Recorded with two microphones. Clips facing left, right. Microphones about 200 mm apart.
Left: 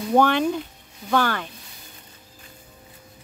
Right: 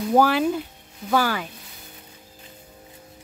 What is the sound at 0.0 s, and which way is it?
Speech, 5° right (ahead or behind).